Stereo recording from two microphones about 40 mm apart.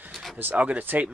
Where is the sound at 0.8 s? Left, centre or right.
Right.